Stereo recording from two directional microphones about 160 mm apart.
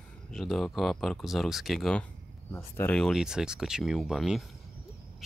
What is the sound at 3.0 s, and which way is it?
Speech, centre (ahead or behind).